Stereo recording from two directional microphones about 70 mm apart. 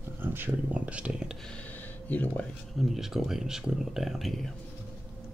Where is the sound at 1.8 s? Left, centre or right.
Left.